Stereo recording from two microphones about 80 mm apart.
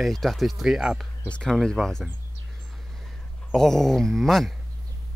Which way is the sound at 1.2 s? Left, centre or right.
Centre.